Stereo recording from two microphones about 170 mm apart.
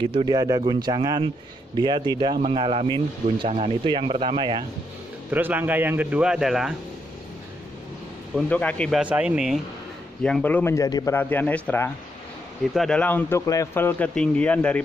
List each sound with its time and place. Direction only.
0.0 s speech: 30° right (ahead or behind)
5.3 s speech: 10° right (ahead or behind)
8.4 s speech: 10° left (ahead or behind)
9.0 s speech: 5° right (ahead or behind)
10.2 s speech: 10° left (ahead or behind)
11.1 s speech: 10° left (ahead or behind)